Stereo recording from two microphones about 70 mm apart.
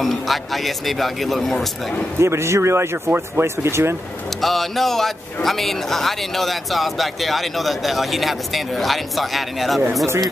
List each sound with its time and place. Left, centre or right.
0.0 s a man's voice: centre
2.1 s speech: right
4.4 s a man's voice: centre